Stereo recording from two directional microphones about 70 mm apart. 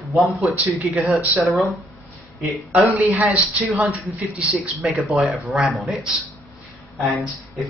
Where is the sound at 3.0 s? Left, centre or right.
Right.